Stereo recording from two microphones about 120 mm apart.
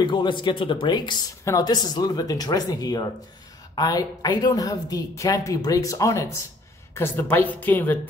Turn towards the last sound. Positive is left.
turn(degrees=15)  # may be behind; listen again after turning